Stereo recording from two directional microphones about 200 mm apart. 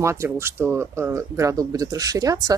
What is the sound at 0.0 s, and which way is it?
Speech, 15° right (ahead or behind).